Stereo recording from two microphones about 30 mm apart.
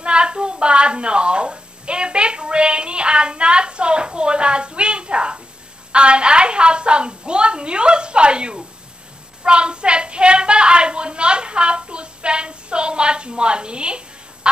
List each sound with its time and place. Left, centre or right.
0.0 s a woman's voice: right